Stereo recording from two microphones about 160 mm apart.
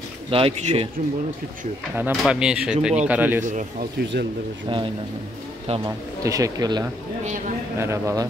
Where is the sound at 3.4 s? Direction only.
55° right (ahead or behind).